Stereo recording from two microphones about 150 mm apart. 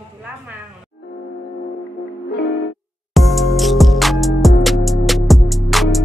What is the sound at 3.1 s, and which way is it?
Music, centre (ahead or behind).